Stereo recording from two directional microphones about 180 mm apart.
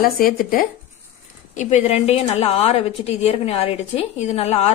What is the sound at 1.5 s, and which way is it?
A woman's voice, 40° left (ahead or behind).